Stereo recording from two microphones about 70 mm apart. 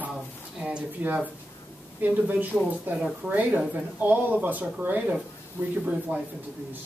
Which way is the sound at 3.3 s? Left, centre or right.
Right.